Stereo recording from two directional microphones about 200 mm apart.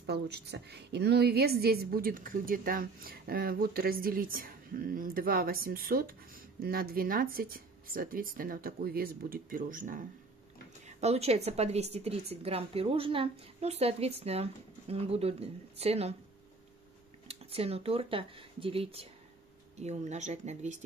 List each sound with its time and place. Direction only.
0.0 s a woman's voice: 55° right (ahead or behind); by 16.2 s 30° right (ahead or behind)
17.3 s a woman's voice: 30° right (ahead or behind)